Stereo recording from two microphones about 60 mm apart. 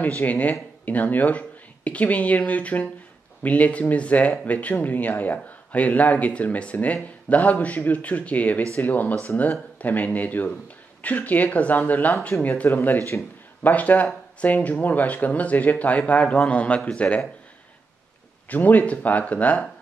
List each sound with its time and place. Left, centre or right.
0.2 s speech: left
18.5 s speech: left